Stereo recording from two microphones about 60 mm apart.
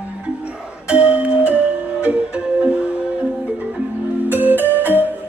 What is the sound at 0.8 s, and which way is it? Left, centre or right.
Music, centre.